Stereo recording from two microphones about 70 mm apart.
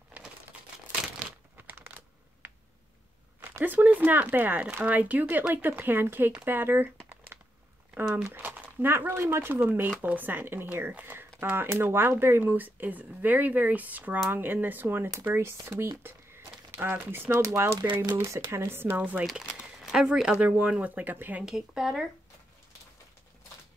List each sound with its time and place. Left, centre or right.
0.1 s crumpling: right
1.7 s computer keyboard: right
3.5 s speech: right
6.4 s a sound: right
8.4 s speech: right
11.0 s a sound: right
11.3 s speech: right
16.7 s speech: right
17.4 s speech: right
18.7 s speech: right
19.9 s speech: centre; by 21.5 s right
21.5 s speech: centre